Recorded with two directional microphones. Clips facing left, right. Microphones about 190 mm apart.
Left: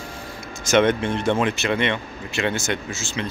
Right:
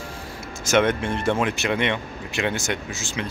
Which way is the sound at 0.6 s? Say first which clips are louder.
Left 2 dB; 5° right (ahead or behind).